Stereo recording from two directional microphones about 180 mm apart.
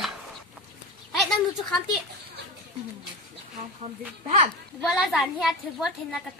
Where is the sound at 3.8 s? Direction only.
40° right (ahead or behind).